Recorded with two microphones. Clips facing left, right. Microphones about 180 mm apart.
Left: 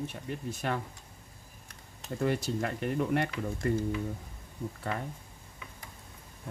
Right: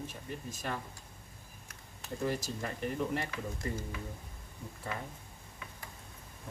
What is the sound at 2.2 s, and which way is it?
Speech, 65° left (ahead or behind).